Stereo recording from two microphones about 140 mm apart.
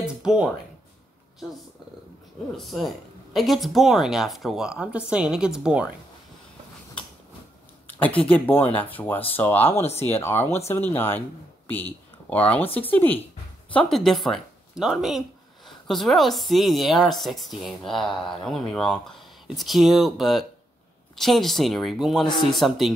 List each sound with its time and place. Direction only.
0.0 s a sound: 5° right (ahead or behind)
2.5 s speech: centre (ahead or behind)
7.8 s speech: 10° left (ahead or behind)